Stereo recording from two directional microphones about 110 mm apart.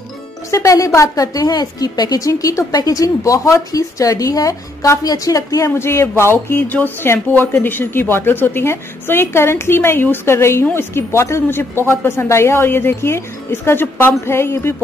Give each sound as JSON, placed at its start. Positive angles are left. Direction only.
{"t": 0.5, "sound": "a woman's voice", "side_deg": 30}